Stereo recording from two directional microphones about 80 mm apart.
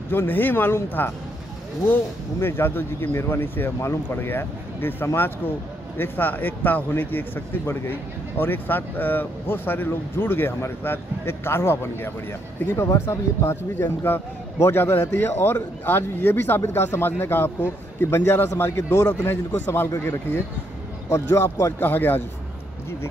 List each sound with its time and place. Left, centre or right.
0.1 s speech: left
2.4 s speech: left
18.9 s a man's voice: left
19.2 s speech: left
21.1 s a man's voice: left
21.7 s speech: left